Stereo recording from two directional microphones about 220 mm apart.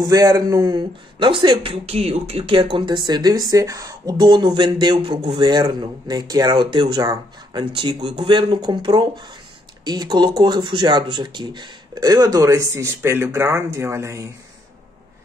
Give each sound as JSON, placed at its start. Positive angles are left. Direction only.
{"t": 0.0, "sound": "speech", "side_deg": -15}